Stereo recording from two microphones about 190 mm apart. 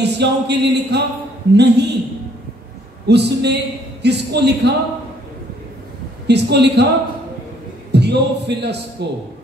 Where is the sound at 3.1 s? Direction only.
60° right (ahead or behind).